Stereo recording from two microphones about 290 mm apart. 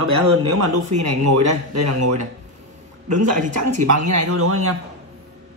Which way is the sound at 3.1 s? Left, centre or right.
Right.